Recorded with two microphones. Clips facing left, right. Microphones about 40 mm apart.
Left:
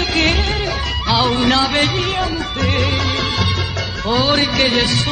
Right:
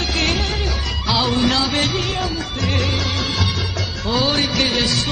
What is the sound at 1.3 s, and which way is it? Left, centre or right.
Music, left.